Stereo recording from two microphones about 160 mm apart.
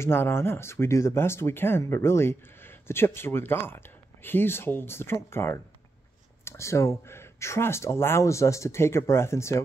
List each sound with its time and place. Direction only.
0.0 s speech: 15° left (ahead or behind)